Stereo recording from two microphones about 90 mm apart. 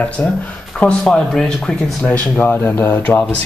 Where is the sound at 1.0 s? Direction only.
5° left (ahead or behind).